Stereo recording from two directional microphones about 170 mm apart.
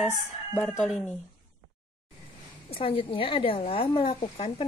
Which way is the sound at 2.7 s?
30° left (ahead or behind).